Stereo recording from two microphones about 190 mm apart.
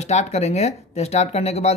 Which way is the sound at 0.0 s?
35° left (ahead or behind).